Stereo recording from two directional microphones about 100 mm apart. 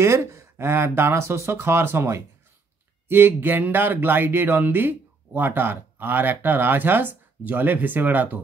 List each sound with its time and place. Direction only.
0.0 s speech: 30° right (ahead or behind)